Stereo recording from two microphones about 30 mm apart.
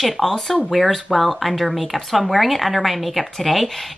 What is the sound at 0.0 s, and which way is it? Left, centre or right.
Speech, centre.